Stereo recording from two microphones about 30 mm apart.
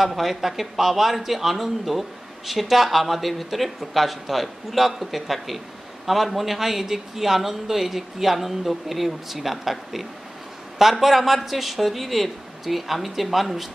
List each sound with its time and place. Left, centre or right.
0.0 s speech: centre